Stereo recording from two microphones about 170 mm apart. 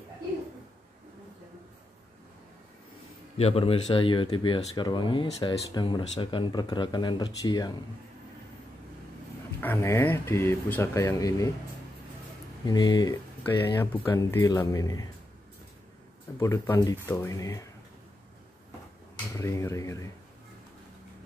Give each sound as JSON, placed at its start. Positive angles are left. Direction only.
{"t": 3.3, "sound": "speech", "side_deg": 35}
{"t": 9.6, "sound": "speech", "side_deg": 15}
{"t": 12.6, "sound": "speech", "side_deg": 25}
{"t": 16.3, "sound": "speech", "side_deg": 15}
{"t": 19.3, "sound": "speech", "side_deg": 15}